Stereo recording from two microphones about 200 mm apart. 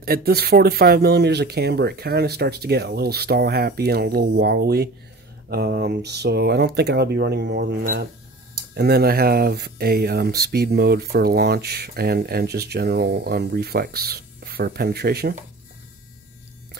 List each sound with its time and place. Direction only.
0.0 s speech: 50° right (ahead or behind)